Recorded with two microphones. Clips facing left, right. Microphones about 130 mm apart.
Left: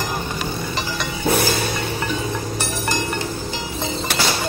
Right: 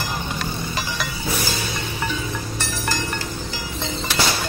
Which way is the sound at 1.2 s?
55° left (ahead or behind).